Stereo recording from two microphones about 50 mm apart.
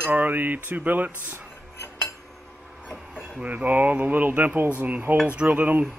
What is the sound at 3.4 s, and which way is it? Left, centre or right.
Cutlery, right.